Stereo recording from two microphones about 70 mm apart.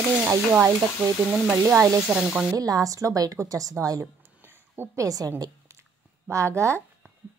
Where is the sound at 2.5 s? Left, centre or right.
Right.